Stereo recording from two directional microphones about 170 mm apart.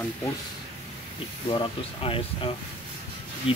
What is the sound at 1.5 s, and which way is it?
Speech, 30° left (ahead or behind).